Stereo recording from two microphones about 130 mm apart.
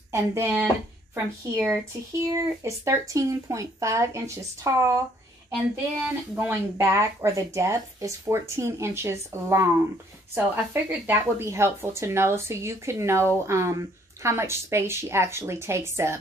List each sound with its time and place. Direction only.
0.1 s a woman's voice: 20° right (ahead or behind)
6.3 s a woman's voice: 15° right (ahead or behind)